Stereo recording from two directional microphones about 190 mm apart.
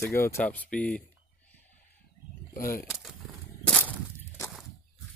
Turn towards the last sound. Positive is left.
turn(degrees=10)  # may be behind; listen again after turning